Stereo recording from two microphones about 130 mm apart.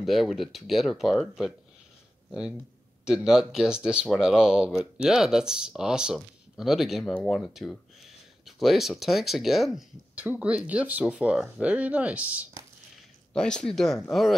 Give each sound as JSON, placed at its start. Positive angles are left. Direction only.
{"t": 0.0, "sound": "speech", "side_deg": 0}
{"t": 3.1, "sound": "speech", "side_deg": -5}
{"t": 13.3, "sound": "speech", "side_deg": 5}